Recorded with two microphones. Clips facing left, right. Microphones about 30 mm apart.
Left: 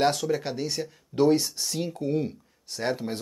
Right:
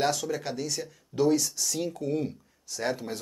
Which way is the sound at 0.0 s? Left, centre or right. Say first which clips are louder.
Left 3 dB; left.